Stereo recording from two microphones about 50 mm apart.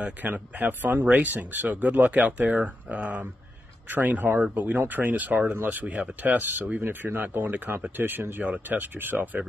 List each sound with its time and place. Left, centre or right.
0.2 s speech: right
5.5 s speech: right
6.8 s speech: right